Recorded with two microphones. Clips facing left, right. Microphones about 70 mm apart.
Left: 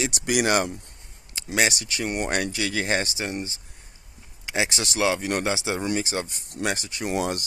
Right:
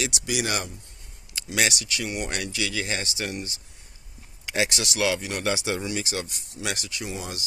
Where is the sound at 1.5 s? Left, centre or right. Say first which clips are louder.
Left 2 dB; left.